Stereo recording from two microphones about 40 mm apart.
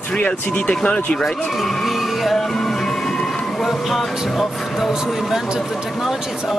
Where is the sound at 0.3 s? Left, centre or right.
Left.